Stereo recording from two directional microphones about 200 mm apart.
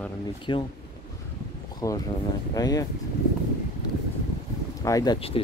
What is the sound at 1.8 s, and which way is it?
Speech, 15° left (ahead or behind).